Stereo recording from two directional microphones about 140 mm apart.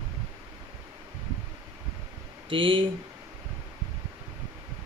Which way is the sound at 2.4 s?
40° right (ahead or behind).